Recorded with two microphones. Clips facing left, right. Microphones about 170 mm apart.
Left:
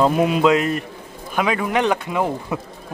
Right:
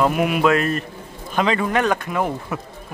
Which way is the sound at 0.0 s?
25° left (ahead or behind).